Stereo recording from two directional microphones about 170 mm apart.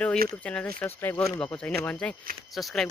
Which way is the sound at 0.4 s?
5° left (ahead or behind).